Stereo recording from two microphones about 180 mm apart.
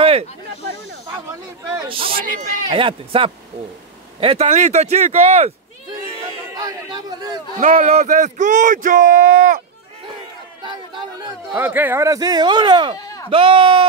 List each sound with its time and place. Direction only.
0.0 s snake: 35° right (ahead or behind)
1.9 s speech: 30° right (ahead or behind)
2.1 s speech: 50° right (ahead or behind)
2.7 s speech: 30° right (ahead or behind)
6.5 s a sound: 20° right (ahead or behind)
7.6 s speech: 45° right (ahead or behind)
10.6 s chatter: 25° right (ahead or behind)
11.5 s speech: 10° right (ahead or behind)
12.9 s bleat: 20° left (ahead or behind)
13.3 s speech: 30° right (ahead or behind)